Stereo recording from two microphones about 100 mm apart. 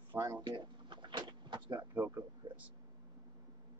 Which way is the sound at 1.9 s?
20° right (ahead or behind).